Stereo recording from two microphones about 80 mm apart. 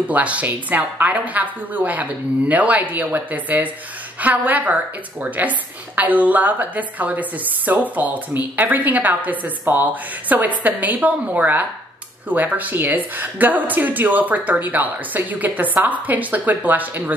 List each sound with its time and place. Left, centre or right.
0.1 s a woman's voice: centre